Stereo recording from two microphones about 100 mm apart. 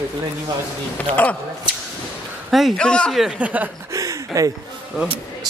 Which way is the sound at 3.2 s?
10° right (ahead or behind).